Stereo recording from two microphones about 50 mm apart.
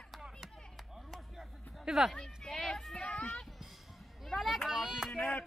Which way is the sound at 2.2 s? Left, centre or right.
Centre.